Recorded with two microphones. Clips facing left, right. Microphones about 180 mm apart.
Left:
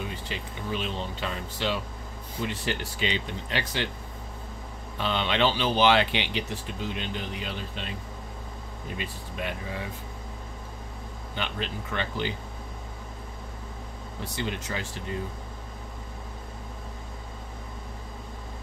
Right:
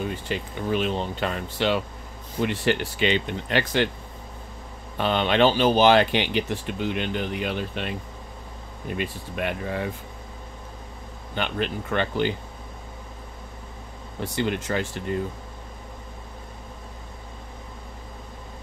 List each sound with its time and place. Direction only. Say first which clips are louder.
0.3 s speech: right 8 dB; 55° right (ahead or behind)
4.9 s speech: right 6 dB; 55° right (ahead or behind)
8.9 s speech: right 6 dB; 60° right (ahead or behind)
11.3 s speech: right 6 dB; 55° right (ahead or behind)
14.2 s speech: right 7 dB; 60° right (ahead or behind)